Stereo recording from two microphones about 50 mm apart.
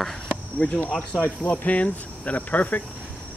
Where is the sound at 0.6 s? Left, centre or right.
Left.